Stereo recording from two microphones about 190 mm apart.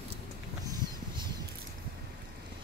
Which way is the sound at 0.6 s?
20° right (ahead or behind).